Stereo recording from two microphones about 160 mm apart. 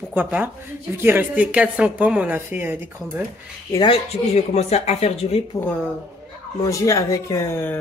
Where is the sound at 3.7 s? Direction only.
35° left (ahead or behind).